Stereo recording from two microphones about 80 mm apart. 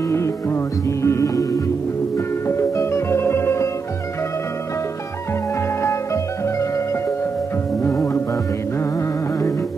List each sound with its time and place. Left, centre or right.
0.1 s music: left